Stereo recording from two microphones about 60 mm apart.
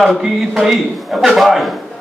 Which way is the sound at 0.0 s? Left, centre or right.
Centre.